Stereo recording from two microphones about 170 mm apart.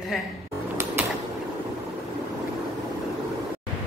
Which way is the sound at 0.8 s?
15° right (ahead or behind).